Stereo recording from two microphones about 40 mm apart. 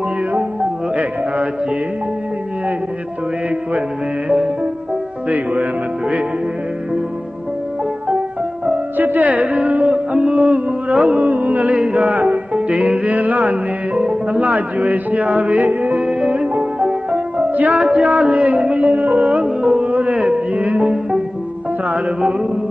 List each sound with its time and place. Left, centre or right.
5.3 s music: right
8.9 s music: right
9.7 s a sound: right
11.7 s music: right
12.1 s music: right
16.0 s music: right
17.7 s music: right
19.4 s music: centre
19.8 s music: right